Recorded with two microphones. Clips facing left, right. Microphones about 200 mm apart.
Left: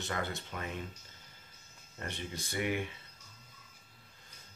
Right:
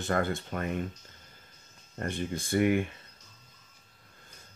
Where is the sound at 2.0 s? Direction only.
50° right (ahead or behind).